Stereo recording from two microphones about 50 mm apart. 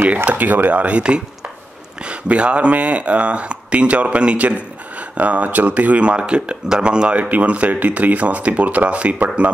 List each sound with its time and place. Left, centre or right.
0.1 s speech: right